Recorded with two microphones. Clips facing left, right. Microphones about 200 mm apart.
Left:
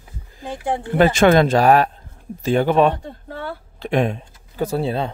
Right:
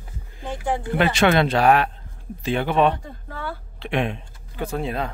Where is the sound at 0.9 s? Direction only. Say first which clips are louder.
Left 5 dB; 45° left (ahead or behind).